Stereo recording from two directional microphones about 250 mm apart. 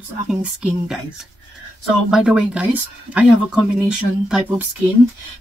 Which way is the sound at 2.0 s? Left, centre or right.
Centre.